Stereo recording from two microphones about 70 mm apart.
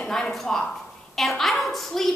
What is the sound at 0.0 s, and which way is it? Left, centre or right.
A woman's voice, centre.